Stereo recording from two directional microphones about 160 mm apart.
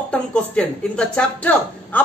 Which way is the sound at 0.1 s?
5° left (ahead or behind).